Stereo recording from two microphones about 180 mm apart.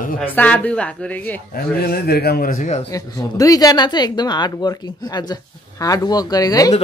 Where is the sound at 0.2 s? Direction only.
10° left (ahead or behind).